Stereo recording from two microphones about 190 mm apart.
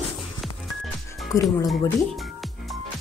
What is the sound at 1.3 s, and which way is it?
Speech, 15° left (ahead or behind).